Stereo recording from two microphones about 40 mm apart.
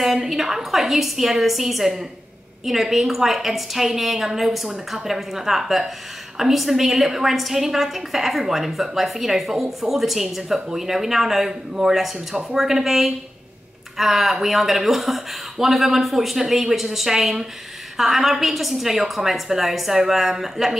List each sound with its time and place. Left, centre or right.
0.0 s a woman's voice: centre